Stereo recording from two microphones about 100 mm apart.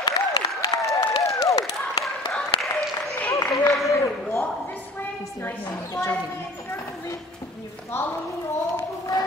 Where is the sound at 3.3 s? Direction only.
35° left (ahead or behind).